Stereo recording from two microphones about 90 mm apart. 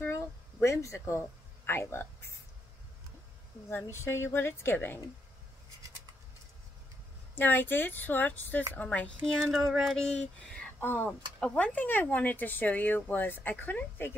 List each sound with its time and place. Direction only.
0.0 s a sound: 30° left (ahead or behind)
0.8 s speech: 30° left (ahead or behind)
3.9 s speech: 30° left (ahead or behind)
7.3 s speech: 20° left (ahead or behind); by 9.5 s 5° left (ahead or behind)
9.5 s a sound: centre (ahead or behind)
9.9 s speech: 10° left (ahead or behind)